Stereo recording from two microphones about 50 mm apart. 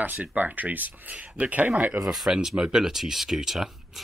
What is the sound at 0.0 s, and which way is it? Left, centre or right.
Speech, right.